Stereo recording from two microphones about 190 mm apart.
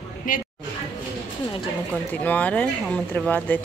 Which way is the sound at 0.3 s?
45° left (ahead or behind).